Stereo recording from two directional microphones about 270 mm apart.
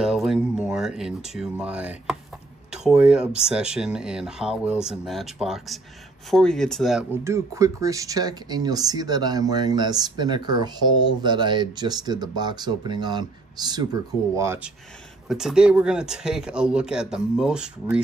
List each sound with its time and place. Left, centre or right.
0.0 s speech: centre